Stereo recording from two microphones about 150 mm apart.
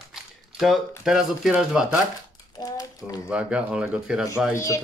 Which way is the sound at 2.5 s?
25° left (ahead or behind).